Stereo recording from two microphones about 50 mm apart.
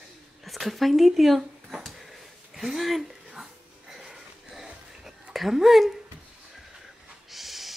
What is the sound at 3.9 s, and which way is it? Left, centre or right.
Wheeze, centre.